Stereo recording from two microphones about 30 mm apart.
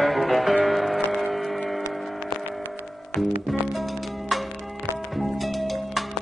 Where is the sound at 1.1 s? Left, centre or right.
Centre.